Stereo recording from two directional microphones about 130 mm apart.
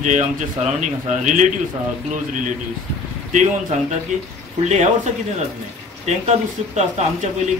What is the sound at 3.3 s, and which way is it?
Speech, 65° right (ahead or behind).